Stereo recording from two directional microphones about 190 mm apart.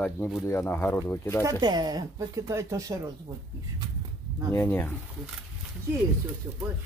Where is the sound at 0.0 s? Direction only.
10° left (ahead or behind).